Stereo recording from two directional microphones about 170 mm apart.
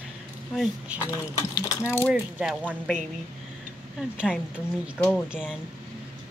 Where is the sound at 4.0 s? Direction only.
5° right (ahead or behind).